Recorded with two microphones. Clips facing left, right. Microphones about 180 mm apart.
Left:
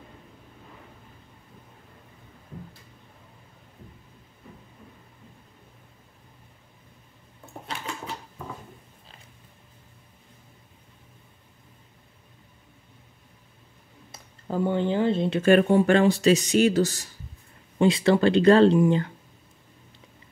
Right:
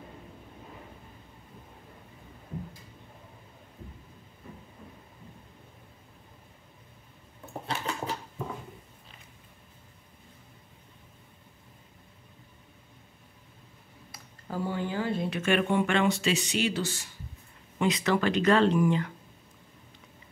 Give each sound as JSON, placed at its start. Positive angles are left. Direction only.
{"t": 14.1, "sound": "speech", "side_deg": 20}
{"t": 15.5, "sound": "speech", "side_deg": 40}
{"t": 17.7, "sound": "speech", "side_deg": 30}